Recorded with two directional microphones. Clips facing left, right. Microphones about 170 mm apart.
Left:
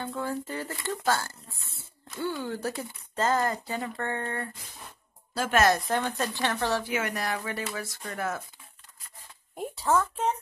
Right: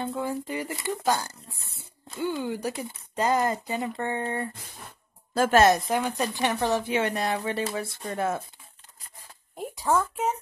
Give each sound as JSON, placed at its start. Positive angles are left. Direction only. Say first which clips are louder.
{"t": 0.0, "sound": "speech", "louder": "right 2 dB", "side_deg": -20}
{"t": 5.3, "sound": "a woman's voice", "louder": "right 6 dB", "side_deg": -50}
{"t": 5.9, "sound": "speech", "louder": "right 2 dB", "side_deg": -10}
{"t": 9.8, "sound": "a woman's voice", "louder": "right 1 dB", "side_deg": -10}